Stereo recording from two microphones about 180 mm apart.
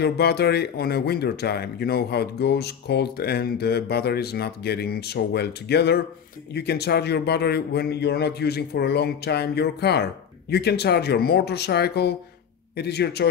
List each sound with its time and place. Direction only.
0.0 s speech: 65° left (ahead or behind)